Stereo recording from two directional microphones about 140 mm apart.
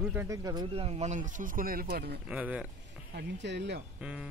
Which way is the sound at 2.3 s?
10° right (ahead or behind).